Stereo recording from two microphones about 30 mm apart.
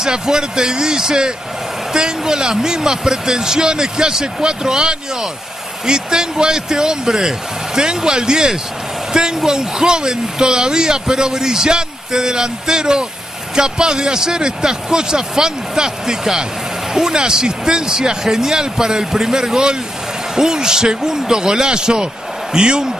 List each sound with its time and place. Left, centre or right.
0.0 s speech: right